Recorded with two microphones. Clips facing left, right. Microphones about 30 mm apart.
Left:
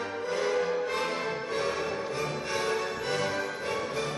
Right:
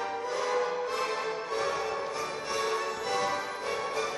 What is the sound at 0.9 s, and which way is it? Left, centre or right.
Music, left.